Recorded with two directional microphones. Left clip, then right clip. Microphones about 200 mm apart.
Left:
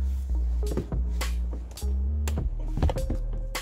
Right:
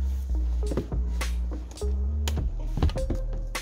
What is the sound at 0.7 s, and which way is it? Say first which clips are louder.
Music: right 1 dB; centre (ahead or behind).